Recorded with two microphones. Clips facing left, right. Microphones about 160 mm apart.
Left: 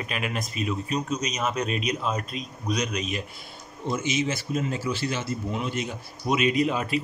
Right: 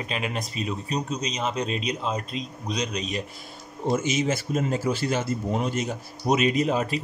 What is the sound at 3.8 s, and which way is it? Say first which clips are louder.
Speech: right 3 dB; 45° right (ahead or behind).